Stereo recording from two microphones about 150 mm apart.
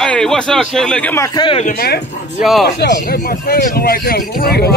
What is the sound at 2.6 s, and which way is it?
Speech, 90° left.